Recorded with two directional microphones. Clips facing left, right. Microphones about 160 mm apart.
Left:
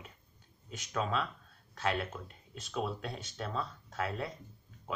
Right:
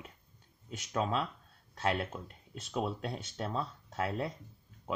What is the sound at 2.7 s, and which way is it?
Speech, 30° right (ahead or behind).